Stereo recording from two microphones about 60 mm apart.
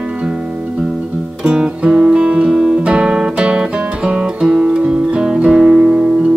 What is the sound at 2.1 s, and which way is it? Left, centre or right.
Guitar, centre.